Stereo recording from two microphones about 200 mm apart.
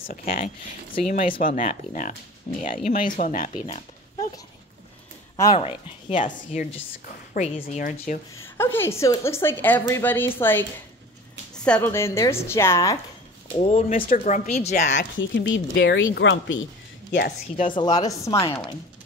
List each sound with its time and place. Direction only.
0.1 s speech: 45° left (ahead or behind)
5.3 s speech: 20° left (ahead or behind)
5.6 s a woman's voice: 30° left (ahead or behind)
8.4 s a woman's voice: 10° left (ahead or behind)
13.6 s speech: 30° left (ahead or behind)
13.9 s speech: 40° left (ahead or behind)
14.7 s speech: 50° left (ahead or behind); by 16.5 s 70° left (ahead or behind)
17.1 s speech: 45° left (ahead or behind)
17.6 s a woman's voice: 25° left (ahead or behind)